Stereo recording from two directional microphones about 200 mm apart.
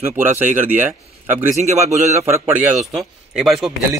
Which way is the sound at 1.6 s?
35° right (ahead or behind).